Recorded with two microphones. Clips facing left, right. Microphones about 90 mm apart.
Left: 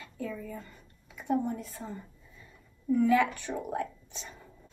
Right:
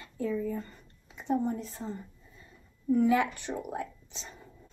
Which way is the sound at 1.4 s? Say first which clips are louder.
Right 2 dB; 25° right (ahead or behind).